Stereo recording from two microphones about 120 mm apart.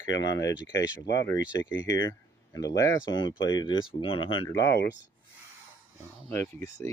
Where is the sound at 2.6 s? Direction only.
30° left (ahead or behind).